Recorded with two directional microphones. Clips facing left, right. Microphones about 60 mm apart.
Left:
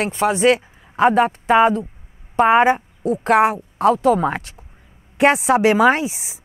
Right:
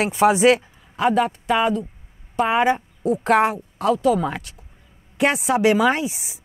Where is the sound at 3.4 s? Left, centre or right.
Centre.